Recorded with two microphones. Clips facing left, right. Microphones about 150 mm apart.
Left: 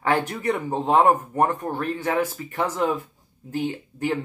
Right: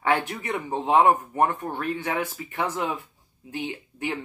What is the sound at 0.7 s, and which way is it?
Speech, centre (ahead or behind).